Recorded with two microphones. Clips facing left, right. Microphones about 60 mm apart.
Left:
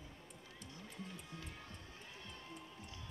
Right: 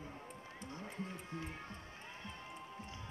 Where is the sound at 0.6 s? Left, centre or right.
Right.